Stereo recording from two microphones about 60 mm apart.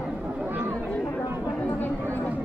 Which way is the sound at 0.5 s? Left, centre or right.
Right.